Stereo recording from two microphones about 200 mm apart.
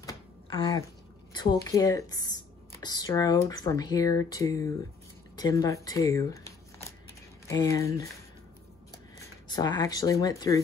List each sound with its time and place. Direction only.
0.0 s a sound: 25° left (ahead or behind)
1.3 s speech: 20° left (ahead or behind)
9.5 s speech: 20° left (ahead or behind)